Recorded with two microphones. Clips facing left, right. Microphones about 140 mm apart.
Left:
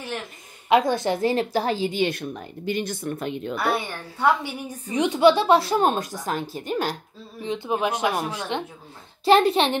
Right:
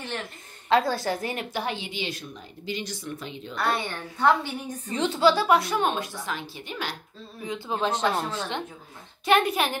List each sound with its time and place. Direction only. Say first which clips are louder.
0.0 s a woman's voice: left 2 dB; 5° left (ahead or behind); by 3.5 s 55° left (ahead or behind)
3.5 s a woman's voice: even; 10° left (ahead or behind); by 7.0 s 45° left (ahead or behind)
7.4 s speech: left 3 dB; 20° left (ahead or behind)
9.2 s a woman's voice: left 5 dB; 30° left (ahead or behind)